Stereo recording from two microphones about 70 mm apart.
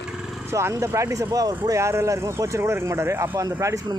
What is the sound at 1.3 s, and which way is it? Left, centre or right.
Speech, right.